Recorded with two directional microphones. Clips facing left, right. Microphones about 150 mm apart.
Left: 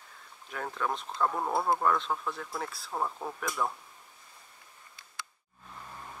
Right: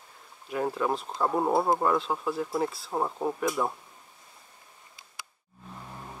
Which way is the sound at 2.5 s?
25° right (ahead or behind).